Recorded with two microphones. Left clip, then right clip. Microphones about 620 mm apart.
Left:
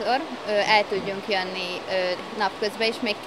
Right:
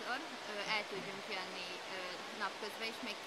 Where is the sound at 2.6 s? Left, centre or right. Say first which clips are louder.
Left 18 dB; left.